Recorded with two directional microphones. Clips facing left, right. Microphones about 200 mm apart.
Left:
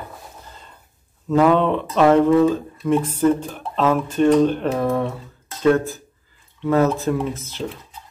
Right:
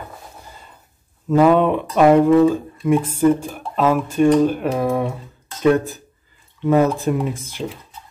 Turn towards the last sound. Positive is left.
turn(degrees=-15)  # may be behind; listen again after turning